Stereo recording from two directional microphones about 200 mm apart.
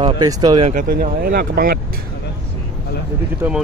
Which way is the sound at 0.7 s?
45° right (ahead or behind).